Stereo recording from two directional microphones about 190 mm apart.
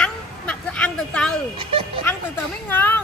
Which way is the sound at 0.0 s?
5° left (ahead or behind).